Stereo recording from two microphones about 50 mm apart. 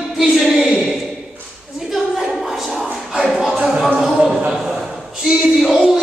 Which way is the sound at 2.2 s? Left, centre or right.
Centre.